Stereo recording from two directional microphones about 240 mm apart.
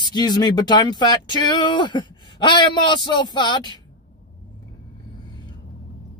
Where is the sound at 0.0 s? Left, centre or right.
Centre.